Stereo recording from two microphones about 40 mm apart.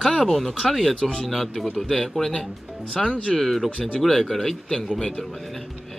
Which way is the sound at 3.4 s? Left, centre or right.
Centre.